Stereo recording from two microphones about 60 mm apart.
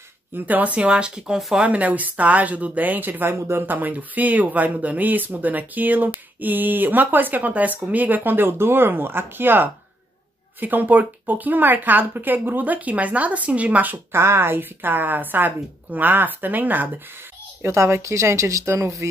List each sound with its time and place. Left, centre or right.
0.5 s speech: right
1.7 s speech: right
3.7 s a woman's voice: right
14.1 s a woman's voice: right
17.6 s speech: right